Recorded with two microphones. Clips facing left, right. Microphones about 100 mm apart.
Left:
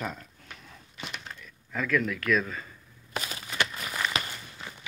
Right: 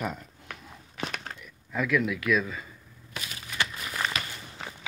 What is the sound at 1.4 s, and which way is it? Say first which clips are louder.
Speech: right 2 dB; 10° right (ahead or behind).